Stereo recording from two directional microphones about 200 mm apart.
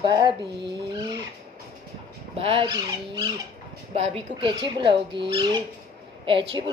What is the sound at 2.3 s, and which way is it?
Speech, 25° right (ahead or behind).